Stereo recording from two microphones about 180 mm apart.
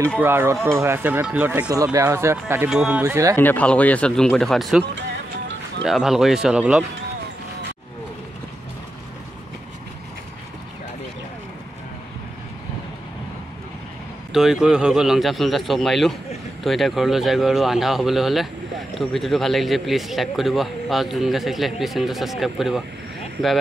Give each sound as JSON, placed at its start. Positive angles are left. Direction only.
{"t": 0.2, "sound": "speech", "side_deg": -10}
{"t": 2.7, "sound": "a man's voice", "side_deg": 0}
{"t": 3.0, "sound": "speech", "side_deg": -15}
{"t": 3.3, "sound": "a man's voice", "side_deg": 10}
{"t": 5.9, "sound": "a man's voice", "side_deg": 0}
{"t": 14.3, "sound": "a man's voice", "side_deg": 0}